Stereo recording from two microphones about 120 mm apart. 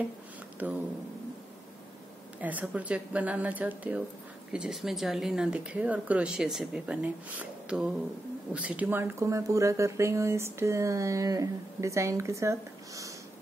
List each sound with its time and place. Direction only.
2.4 s speech: 15° right (ahead or behind)